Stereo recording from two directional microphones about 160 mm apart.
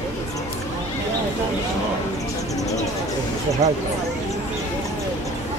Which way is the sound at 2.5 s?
20° left (ahead or behind).